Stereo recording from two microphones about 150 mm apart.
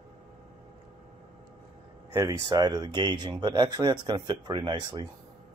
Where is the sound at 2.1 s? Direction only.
20° right (ahead or behind).